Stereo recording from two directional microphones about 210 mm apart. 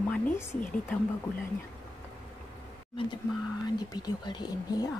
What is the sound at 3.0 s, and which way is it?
Speech, 25° left (ahead or behind).